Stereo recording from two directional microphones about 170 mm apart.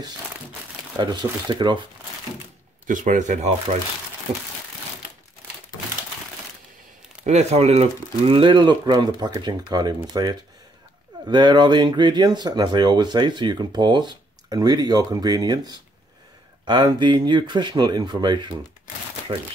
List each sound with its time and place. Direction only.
0.9 s speech: 25° right (ahead or behind)
2.9 s speech: 50° right (ahead or behind)
7.2 s speech: 40° right (ahead or behind)